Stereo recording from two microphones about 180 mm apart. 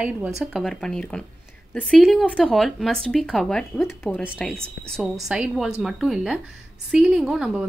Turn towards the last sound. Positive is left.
turn(degrees=-5)  # may be behind; listen again after turning